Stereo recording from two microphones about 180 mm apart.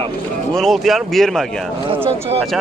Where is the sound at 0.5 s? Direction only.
Centre (ahead or behind).